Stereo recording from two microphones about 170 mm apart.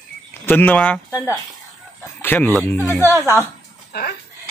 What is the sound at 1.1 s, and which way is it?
Speech, 10° right (ahead or behind).